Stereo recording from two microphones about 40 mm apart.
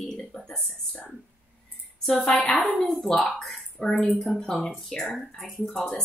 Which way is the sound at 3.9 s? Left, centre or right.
Left.